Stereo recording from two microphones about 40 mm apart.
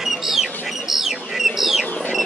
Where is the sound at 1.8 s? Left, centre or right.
Left.